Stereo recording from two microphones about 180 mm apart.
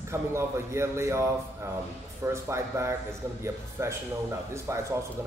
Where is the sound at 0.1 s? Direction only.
15° right (ahead or behind).